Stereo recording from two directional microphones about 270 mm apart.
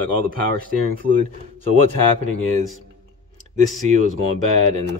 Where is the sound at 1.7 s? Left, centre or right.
Right.